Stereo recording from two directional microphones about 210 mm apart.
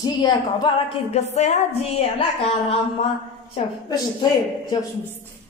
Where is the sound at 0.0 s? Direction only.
20° left (ahead or behind).